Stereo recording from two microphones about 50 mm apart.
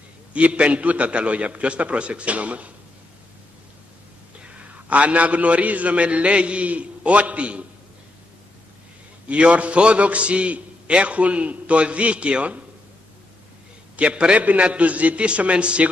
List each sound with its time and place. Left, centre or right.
0.3 s a man's voice: right
4.8 s a man's voice: right
9.3 s a man's voice: right
13.9 s a man's voice: right